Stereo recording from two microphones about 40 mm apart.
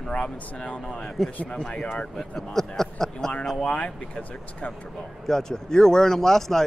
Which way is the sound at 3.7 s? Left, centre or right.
Left.